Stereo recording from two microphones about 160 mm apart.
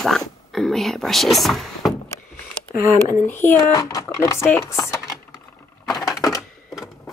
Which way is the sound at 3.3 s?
15° left (ahead or behind).